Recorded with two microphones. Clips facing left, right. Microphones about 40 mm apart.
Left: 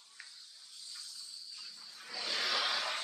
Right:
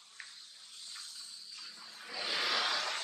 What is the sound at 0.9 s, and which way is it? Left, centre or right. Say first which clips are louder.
Water: even; right.